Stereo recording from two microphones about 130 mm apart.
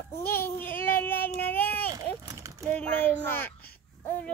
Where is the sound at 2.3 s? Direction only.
25° right (ahead or behind).